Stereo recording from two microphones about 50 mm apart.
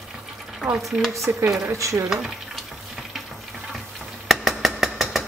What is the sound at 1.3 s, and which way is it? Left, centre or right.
Speech, right.